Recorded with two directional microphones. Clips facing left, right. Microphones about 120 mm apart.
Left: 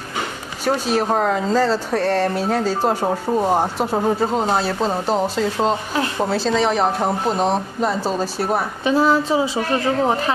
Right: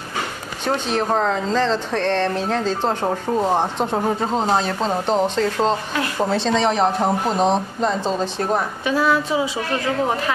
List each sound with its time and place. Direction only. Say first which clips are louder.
0.7 s speech: left 2 dB; 5° left (ahead or behind)
8.8 s a woman's voice: left 4 dB; 30° left (ahead or behind)